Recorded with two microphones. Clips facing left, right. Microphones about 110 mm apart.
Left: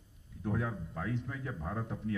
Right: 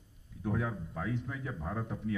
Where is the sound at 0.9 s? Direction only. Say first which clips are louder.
Right 1 dB; 10° right (ahead or behind).